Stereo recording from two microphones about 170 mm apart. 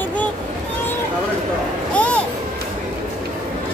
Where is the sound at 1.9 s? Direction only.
5° left (ahead or behind).